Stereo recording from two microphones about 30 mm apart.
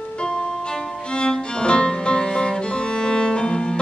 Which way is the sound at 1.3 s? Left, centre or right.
Left.